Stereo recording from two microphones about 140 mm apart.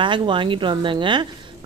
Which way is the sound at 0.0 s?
35° right (ahead or behind).